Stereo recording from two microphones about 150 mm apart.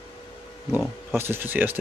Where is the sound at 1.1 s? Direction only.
15° right (ahead or behind).